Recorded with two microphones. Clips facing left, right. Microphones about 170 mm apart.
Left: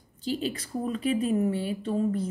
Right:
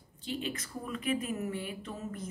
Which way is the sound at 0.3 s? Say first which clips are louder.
Left 7 dB; 35° left (ahead or behind).